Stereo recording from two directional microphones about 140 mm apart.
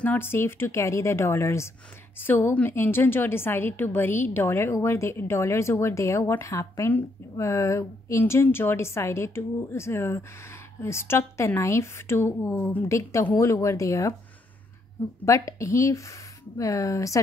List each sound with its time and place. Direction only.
0.0 s a woman's voice: 15° left (ahead or behind)
15.2 s a woman's voice: 20° left (ahead or behind)